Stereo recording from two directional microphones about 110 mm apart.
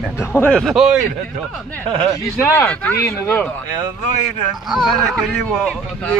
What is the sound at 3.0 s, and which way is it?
Speech, 25° left (ahead or behind).